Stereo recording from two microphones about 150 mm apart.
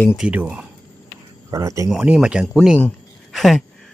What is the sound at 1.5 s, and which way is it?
Speech, 20° right (ahead or behind).